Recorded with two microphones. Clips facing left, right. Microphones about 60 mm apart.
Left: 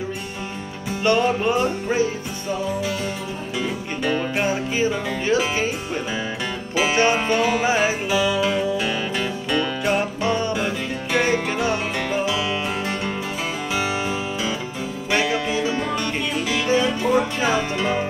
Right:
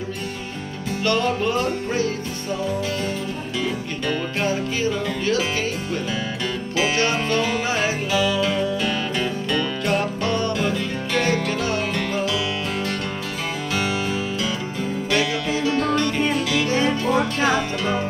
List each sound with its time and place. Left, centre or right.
1.0 s music: centre
3.6 s music: centre
6.8 s music: centre
13.7 s music: left